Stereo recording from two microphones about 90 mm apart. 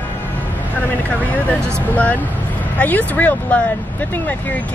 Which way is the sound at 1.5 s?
15° left (ahead or behind).